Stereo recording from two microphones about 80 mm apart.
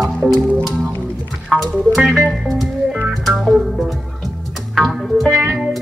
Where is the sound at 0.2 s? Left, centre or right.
Centre.